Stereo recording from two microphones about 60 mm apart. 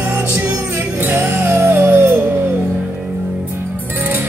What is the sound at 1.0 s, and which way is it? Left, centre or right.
Music, right.